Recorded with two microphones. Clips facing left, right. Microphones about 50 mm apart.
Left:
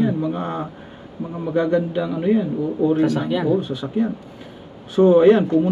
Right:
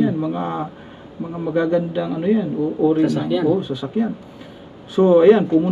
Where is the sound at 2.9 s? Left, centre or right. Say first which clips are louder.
Right 1 dB; left.